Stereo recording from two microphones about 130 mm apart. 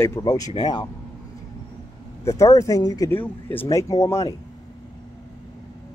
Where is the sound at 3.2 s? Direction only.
15° left (ahead or behind).